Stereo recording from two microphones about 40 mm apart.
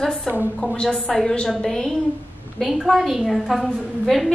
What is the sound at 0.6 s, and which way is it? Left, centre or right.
A woman's voice, centre.